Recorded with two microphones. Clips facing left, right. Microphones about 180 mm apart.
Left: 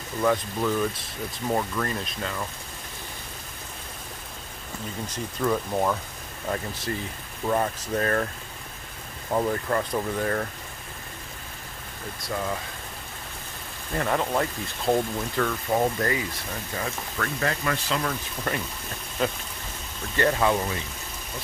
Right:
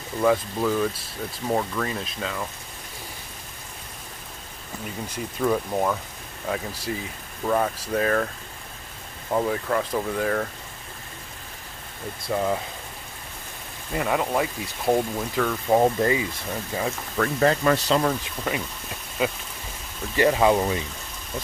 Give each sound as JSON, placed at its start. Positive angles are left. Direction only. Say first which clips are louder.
{"t": 0.2, "sound": "speech", "louder": "right 3 dB", "side_deg": -5}
{"t": 5.1, "sound": "speech", "louder": "right 2 dB", "side_deg": -5}
{"t": 9.3, "sound": "speech", "louder": "right 1 dB", "side_deg": 0}
{"t": 12.3, "sound": "speech", "louder": "right 5 dB", "side_deg": -15}
{"t": 13.9, "sound": "speech", "louder": "right 1 dB", "side_deg": -5}
{"t": 15.8, "sound": "speech", "louder": "right 4 dB", "side_deg": -20}
{"t": 16.8, "sound": "speech", "louder": "right 6 dB", "side_deg": -30}
{"t": 19.2, "sound": "speech", "louder": "right 1 dB", "side_deg": -5}